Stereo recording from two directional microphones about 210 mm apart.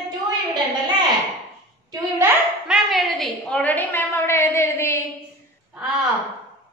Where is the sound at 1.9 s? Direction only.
5° right (ahead or behind); by 5.0 s 10° left (ahead or behind).